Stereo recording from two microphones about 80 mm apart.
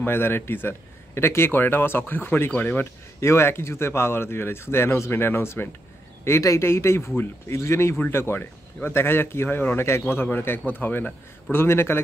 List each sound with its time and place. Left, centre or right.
0.0 s a man's voice: left
3.2 s a man's voice: left